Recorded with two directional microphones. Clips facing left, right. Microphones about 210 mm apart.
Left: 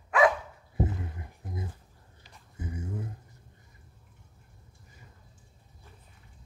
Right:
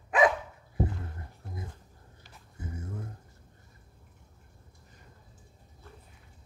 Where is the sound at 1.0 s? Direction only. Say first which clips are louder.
Left 3 dB; 15° left (ahead or behind).